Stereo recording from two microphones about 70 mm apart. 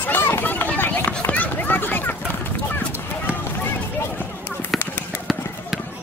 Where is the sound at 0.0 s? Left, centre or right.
Left.